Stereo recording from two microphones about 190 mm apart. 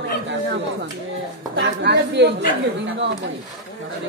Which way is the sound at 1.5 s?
65° right (ahead or behind).